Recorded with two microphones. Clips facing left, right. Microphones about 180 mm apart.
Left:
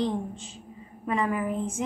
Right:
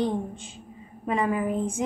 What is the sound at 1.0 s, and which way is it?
Speech, 20° right (ahead or behind).